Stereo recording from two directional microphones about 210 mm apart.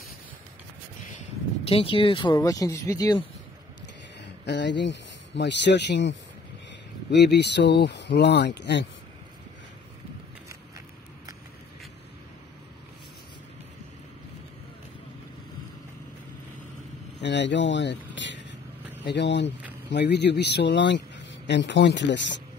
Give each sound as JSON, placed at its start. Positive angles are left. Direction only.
{"t": 1.7, "sound": "speech", "side_deg": 25}
{"t": 4.5, "sound": "speech", "side_deg": 55}
{"t": 17.2, "sound": "speech", "side_deg": 55}